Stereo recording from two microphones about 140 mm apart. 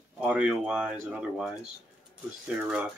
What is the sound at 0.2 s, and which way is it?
Speech, 10° right (ahead or behind).